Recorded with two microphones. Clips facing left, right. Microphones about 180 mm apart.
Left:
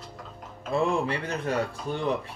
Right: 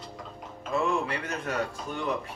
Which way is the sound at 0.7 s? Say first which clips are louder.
Left 2 dB; 30° left (ahead or behind).